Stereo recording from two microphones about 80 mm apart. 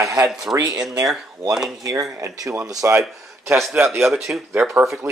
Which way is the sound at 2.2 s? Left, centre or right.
Right.